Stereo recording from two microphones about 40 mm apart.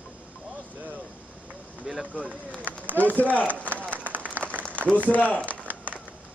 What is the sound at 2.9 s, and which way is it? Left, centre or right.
Speech, left.